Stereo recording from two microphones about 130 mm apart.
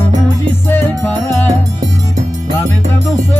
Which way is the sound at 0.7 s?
20° left (ahead or behind).